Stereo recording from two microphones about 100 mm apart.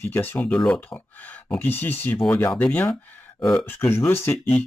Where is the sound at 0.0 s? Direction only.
20° left (ahead or behind).